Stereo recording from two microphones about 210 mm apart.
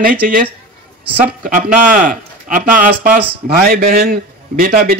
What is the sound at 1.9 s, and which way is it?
Speech, 40° right (ahead or behind).